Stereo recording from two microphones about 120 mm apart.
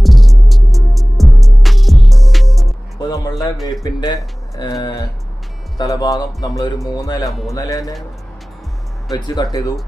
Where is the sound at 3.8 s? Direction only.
35° left (ahead or behind).